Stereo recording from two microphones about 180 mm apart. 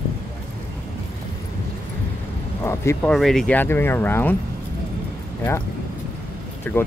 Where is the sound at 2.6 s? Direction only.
15° left (ahead or behind).